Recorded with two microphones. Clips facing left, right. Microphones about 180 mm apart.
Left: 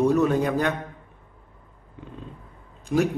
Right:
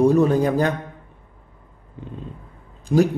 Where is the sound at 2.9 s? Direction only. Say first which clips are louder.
Right 5 dB; 30° right (ahead or behind).